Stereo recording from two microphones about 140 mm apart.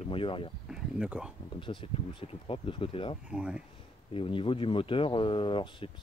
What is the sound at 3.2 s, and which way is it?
Speech, 5° right (ahead or behind).